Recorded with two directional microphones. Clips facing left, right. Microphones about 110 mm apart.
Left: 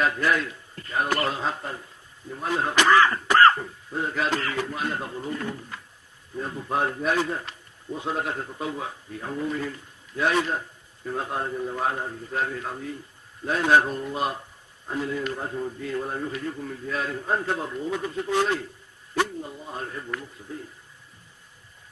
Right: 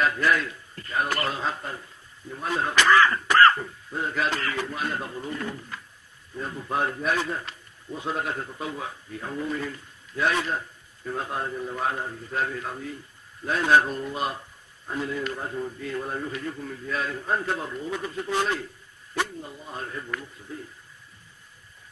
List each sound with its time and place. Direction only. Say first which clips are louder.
0.0 s a man's voice: even; 25° left (ahead or behind)